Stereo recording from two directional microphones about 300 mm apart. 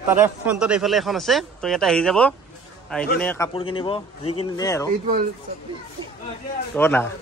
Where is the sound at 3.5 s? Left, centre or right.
Centre.